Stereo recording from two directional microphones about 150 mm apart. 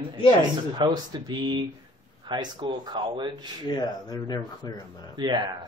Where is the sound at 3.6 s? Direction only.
25° left (ahead or behind).